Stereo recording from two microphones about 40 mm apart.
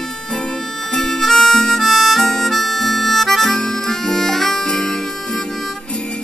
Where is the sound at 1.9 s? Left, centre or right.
Centre.